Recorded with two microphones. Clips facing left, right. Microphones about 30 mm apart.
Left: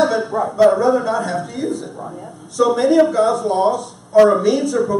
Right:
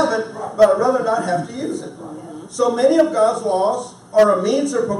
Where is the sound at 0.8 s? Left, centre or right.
Centre.